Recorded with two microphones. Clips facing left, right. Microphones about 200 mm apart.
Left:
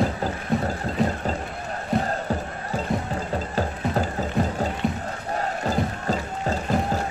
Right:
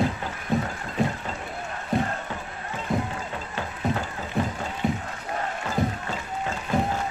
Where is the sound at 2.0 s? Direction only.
35° left (ahead or behind).